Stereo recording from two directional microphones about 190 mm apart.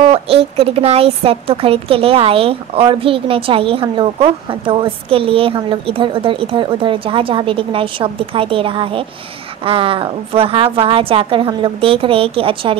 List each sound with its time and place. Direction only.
0.0 s a woman's voice: 30° right (ahead or behind)